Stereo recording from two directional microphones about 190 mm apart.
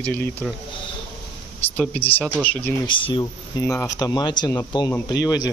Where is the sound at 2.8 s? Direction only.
25° left (ahead or behind).